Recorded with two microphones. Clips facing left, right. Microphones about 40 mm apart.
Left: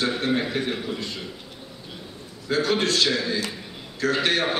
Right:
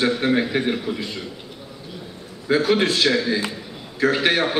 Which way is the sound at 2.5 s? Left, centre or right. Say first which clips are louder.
Right 4 dB; centre.